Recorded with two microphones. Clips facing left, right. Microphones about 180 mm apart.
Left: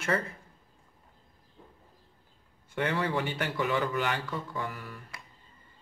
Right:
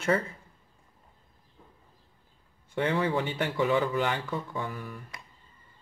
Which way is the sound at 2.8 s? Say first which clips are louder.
Right 2 dB; 20° right (ahead or behind).